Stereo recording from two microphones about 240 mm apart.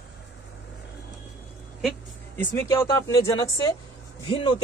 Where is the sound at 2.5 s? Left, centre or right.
Centre.